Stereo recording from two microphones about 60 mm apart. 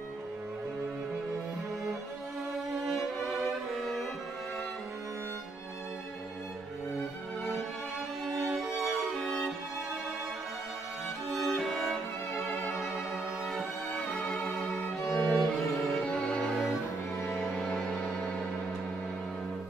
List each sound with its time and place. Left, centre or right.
3.8 s music: centre
8.5 s music: centre
11.3 s violin: centre
14.2 s violin: centre
16.1 s music: centre